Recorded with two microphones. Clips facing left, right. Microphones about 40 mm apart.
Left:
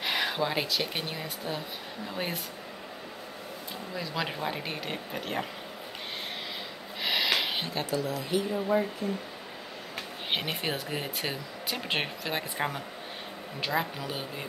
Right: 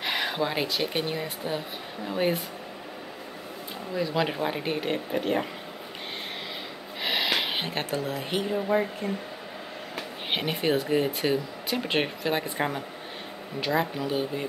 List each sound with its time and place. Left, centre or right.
0.0 s speech: centre
3.9 s speech: centre
7.0 s a sound: centre
7.6 s speech: right
9.9 s speech: centre